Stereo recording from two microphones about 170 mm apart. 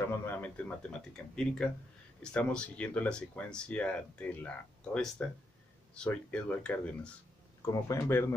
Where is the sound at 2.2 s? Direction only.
5° left (ahead or behind).